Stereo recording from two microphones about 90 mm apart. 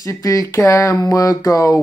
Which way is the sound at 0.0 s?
40° left (ahead or behind).